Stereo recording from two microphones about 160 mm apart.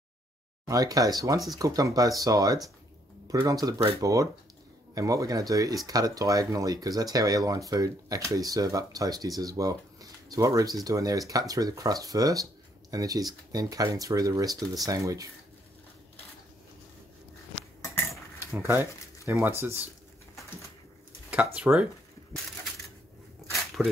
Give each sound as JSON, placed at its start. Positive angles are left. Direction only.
{"t": 0.7, "sound": "speech", "side_deg": -20}
{"t": 18.4, "sound": "speech", "side_deg": -15}
{"t": 21.5, "sound": "speech", "side_deg": -10}
{"t": 23.8, "sound": "speech", "side_deg": 0}